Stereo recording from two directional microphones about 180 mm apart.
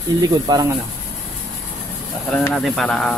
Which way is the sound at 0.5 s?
25° right (ahead or behind).